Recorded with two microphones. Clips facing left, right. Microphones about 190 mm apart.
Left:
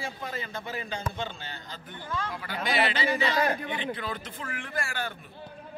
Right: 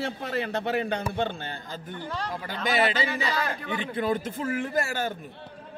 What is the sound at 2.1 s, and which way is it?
Speech, 35° right (ahead or behind).